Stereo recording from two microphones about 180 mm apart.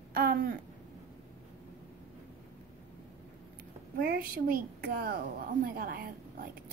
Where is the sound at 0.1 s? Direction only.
55° right (ahead or behind).